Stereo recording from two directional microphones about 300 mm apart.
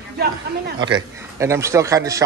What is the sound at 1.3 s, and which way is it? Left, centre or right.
Speech, centre.